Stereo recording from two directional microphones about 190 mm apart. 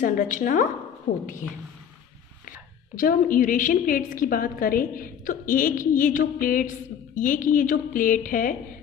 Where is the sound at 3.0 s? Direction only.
45° left (ahead or behind).